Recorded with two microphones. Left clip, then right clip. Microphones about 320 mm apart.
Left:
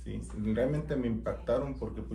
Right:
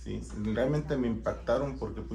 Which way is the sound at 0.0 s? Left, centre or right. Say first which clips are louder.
Right 1 dB; centre.